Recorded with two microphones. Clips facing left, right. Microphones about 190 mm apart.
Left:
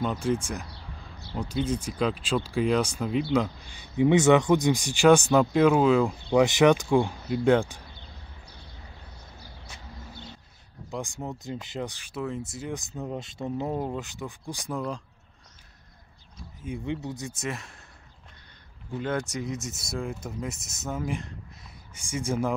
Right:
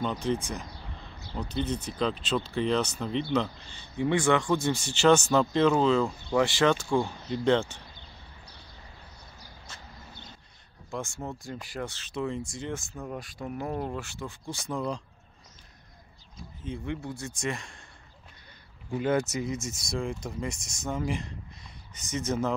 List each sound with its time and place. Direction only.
0.0 s speech: 10° left (ahead or behind)
10.9 s speech: 15° left (ahead or behind)
12.7 s speech: 20° left (ahead or behind)
16.6 s speech: 15° left (ahead or behind)
17.2 s speech: 5° left (ahead or behind)
18.9 s speech: 10° right (ahead or behind); by 22.5 s 10° left (ahead or behind)